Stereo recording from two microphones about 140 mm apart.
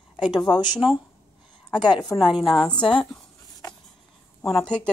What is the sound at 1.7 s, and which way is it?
Speech, 30° left (ahead or behind).